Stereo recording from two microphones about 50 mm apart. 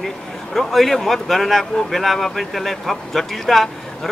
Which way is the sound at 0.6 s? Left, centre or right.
Centre.